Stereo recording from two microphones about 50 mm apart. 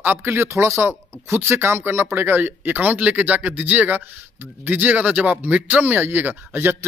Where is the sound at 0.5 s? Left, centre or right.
Right.